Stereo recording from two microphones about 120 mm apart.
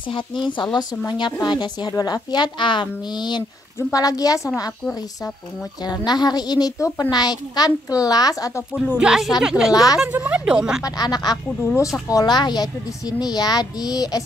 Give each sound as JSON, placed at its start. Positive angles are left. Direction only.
{"t": 0.7, "sound": "a child's voice", "side_deg": 40}
{"t": 5.8, "sound": "a child's voice", "side_deg": 35}
{"t": 8.9, "sound": "speech", "side_deg": -5}
{"t": 10.8, "sound": "a child's voice", "side_deg": 35}
{"t": 11.6, "sound": "speech", "side_deg": 20}
{"t": 12.1, "sound": "a child's voice", "side_deg": 35}